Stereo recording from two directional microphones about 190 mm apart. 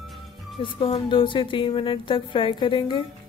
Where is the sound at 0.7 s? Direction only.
30° left (ahead or behind).